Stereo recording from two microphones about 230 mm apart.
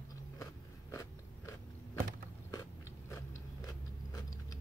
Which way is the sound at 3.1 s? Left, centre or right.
Centre.